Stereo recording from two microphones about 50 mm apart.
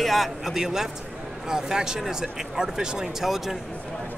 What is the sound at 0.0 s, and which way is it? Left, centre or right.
Speech, centre.